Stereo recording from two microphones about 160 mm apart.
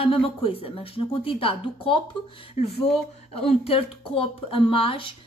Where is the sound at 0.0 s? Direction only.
35° left (ahead or behind).